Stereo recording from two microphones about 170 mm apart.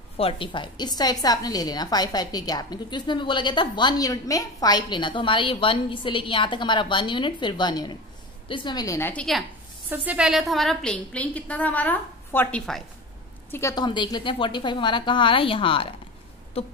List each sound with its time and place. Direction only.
0.2 s a woman's voice: 30° left (ahead or behind); by 9.2 s 15° left (ahead or behind)
9.8 s a woman's voice: 10° right (ahead or behind)
13.5 s a woman's voice: 15° left (ahead or behind)
16.6 s a sound: 35° left (ahead or behind)